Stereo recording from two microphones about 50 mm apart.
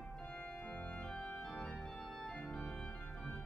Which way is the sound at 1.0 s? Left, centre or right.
Left.